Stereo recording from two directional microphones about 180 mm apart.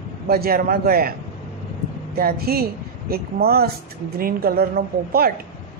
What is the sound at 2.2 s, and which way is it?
Speech, 55° right (ahead or behind).